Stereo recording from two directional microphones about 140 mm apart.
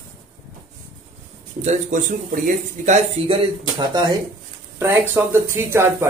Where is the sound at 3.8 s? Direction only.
30° right (ahead or behind).